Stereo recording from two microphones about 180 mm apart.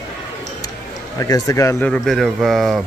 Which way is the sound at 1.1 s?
20° left (ahead or behind).